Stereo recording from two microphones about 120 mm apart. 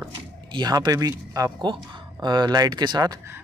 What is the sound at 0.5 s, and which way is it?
Speech, 35° right (ahead or behind).